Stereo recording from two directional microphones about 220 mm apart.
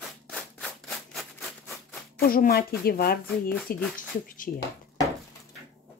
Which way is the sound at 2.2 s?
40° left (ahead or behind).